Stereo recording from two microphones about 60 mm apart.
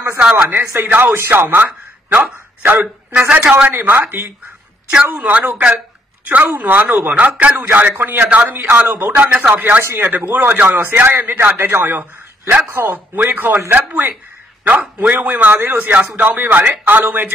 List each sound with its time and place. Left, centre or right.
0.2 s speech: centre
0.5 s a man's voice: right
3.1 s a man's voice: right
3.6 s a man's voice: right
7.2 s a man's voice: right
7.5 s a man's voice: right
9.3 s a man's voice: centre
9.6 s a man's voice: right